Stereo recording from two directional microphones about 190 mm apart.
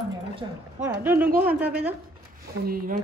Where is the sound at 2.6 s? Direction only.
50° right (ahead or behind).